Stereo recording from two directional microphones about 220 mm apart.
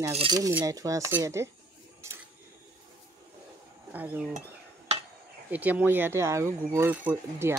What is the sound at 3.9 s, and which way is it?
Speech, 5° right (ahead or behind).